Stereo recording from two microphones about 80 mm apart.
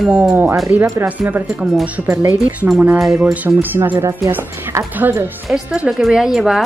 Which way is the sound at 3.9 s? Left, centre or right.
Right.